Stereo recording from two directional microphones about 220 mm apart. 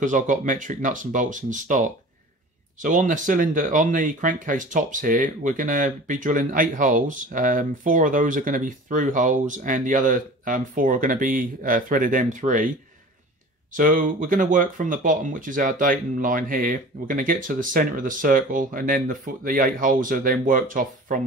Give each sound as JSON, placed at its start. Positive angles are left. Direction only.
{"t": 0.0, "sound": "speech", "side_deg": -35}
{"t": 13.7, "sound": "speech", "side_deg": -35}